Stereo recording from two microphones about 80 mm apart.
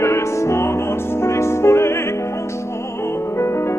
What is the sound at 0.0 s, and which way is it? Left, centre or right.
Music, left.